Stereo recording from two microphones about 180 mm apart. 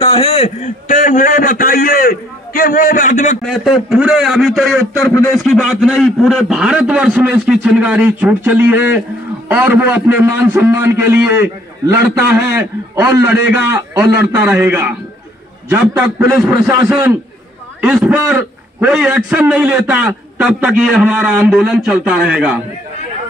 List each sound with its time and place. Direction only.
0.0 s a man's voice: 35° left (ahead or behind)
3.4 s a man's voice: centre (ahead or behind)